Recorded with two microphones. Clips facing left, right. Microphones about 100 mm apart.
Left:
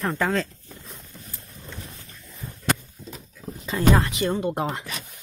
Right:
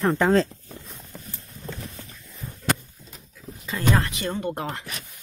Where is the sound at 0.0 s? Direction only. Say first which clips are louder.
Right 5 dB; 25° right (ahead or behind).